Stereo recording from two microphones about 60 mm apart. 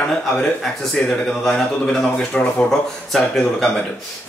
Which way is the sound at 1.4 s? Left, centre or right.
Centre.